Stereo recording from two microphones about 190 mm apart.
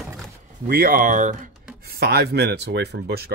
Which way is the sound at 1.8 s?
55° right (ahead or behind).